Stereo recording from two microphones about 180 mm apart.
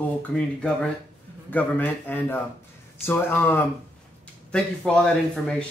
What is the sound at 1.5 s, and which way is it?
Speech, 10° left (ahead or behind).